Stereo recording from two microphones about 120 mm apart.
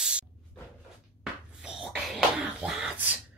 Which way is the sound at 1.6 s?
10° right (ahead or behind).